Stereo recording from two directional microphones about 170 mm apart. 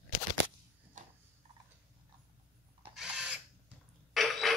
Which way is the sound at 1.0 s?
50° right (ahead or behind).